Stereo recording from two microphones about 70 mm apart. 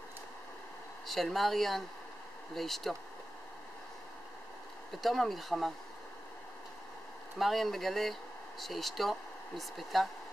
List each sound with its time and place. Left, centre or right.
1.0 s speech: centre
5.0 s speech: centre
7.3 s speech: centre